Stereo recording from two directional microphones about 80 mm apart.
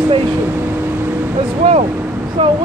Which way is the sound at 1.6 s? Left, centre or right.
Right.